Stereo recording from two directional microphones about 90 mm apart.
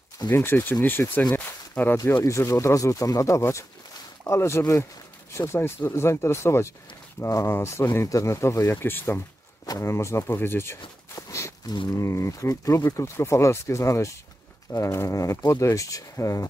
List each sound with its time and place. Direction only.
0.3 s speech: 25° left (ahead or behind)
1.3 s a sound: 25° left (ahead or behind)
2.2 s speech: 35° left (ahead or behind)
11.6 s speech: 55° left (ahead or behind)
11.9 s speech: 35° left (ahead or behind)